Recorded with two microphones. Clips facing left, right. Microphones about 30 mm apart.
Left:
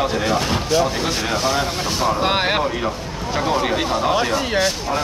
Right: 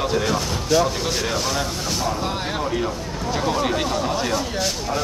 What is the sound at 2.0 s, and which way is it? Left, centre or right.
Speech, left.